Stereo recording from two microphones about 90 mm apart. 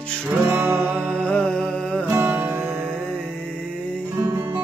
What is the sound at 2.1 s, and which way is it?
Music, 25° right (ahead or behind).